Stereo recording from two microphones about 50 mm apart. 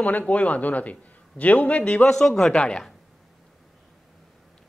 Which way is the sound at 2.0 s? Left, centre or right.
Centre.